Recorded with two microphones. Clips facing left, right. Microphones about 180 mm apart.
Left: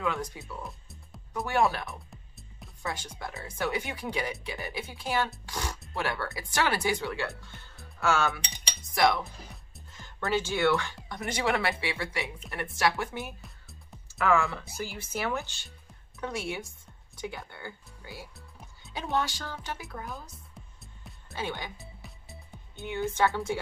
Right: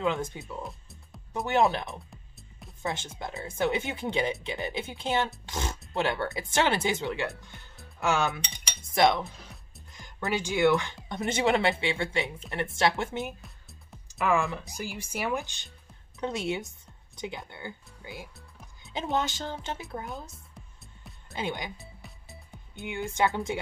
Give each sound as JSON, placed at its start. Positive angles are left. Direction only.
{"t": 0.0, "sound": "speech", "side_deg": -25}
{"t": 8.9, "sound": "cutlery", "side_deg": -20}
{"t": 9.2, "sound": "music", "side_deg": 0}
{"t": 9.9, "sound": "speech", "side_deg": -15}
{"t": 13.4, "sound": "music", "side_deg": 0}
{"t": 14.0, "sound": "speech", "side_deg": -15}
{"t": 20.8, "sound": "music", "side_deg": 0}
{"t": 21.4, "sound": "speech", "side_deg": -15}
{"t": 21.7, "sound": "music", "side_deg": 0}
{"t": 22.8, "sound": "speech", "side_deg": -15}